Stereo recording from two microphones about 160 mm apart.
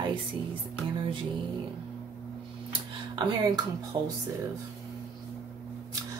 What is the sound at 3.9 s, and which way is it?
Speech, 30° right (ahead or behind).